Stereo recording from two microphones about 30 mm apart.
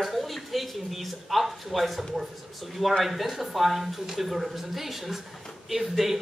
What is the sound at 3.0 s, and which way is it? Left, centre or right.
Speech, centre.